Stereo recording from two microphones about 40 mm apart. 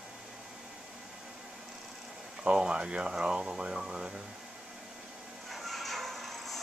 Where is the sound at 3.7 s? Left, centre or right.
Centre.